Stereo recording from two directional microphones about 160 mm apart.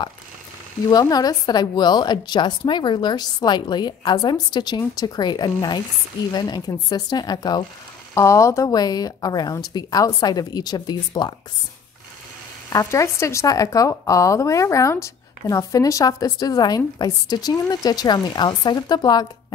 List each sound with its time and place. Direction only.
0.8 s a woman's voice: 25° left (ahead or behind)
12.6 s a woman's voice: 20° left (ahead or behind)